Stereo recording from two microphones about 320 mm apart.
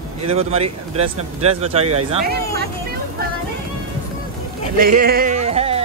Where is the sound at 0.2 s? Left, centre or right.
Centre.